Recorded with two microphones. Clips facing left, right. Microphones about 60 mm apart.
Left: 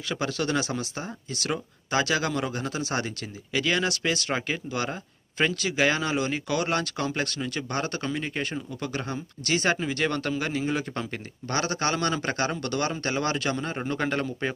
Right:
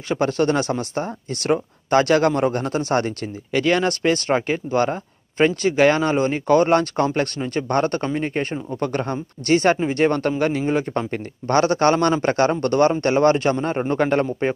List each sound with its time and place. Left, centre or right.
0.1 s speech: right